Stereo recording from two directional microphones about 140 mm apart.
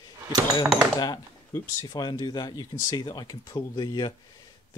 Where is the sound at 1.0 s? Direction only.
30° left (ahead or behind).